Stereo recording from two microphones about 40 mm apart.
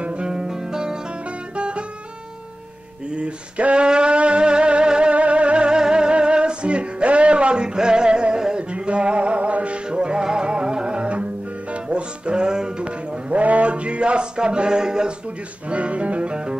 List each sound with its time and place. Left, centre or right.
0.0 s music: right
0.3 s music: centre
1.6 s guitar: right
3.1 s music: right
9.8 s music: right
13.3 s a sound: right; by 15.1 s centre
15.7 s music: right